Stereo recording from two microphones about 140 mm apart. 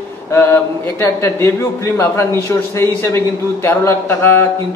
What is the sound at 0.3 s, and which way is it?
A man's voice, 20° left (ahead or behind).